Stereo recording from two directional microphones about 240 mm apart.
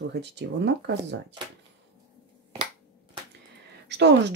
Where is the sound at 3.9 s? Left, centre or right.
Right.